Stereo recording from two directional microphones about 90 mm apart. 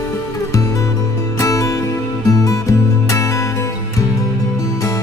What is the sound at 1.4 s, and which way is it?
Music, 35° left (ahead or behind).